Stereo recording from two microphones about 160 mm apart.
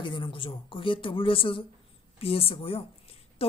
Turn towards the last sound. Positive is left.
turn(degrees=35)  # may be behind; listen again after turning